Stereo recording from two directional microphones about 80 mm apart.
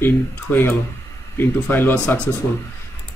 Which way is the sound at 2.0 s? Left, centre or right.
Centre.